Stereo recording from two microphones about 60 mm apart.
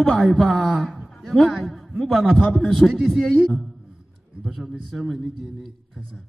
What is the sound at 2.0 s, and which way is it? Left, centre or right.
A man's voice, centre.